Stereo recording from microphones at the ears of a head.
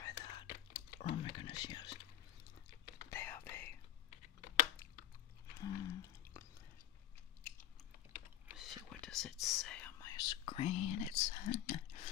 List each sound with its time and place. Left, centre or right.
0.0 s whispering: left
5.5 s a sound: left
8.1 s whispering: left